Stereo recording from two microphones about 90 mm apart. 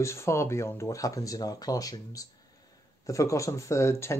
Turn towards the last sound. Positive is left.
turn(degrees=30)  # may be behind; listen again after turning